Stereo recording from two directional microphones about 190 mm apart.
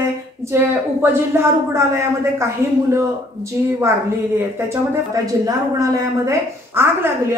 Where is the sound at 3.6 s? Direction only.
15° right (ahead or behind).